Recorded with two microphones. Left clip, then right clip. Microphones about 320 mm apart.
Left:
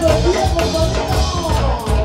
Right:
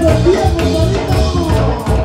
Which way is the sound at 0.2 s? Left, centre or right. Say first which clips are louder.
Right 3 dB; centre.